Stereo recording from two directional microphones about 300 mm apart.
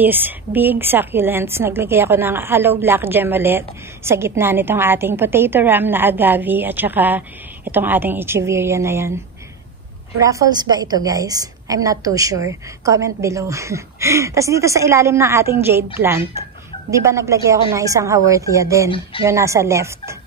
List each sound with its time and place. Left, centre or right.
0.0 s a woman's voice: centre